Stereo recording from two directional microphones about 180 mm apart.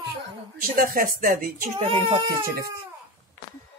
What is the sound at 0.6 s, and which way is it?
Speech, 55° right (ahead or behind).